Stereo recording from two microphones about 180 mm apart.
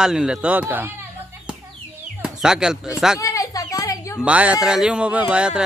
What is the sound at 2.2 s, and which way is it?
Speech, 5° right (ahead or behind).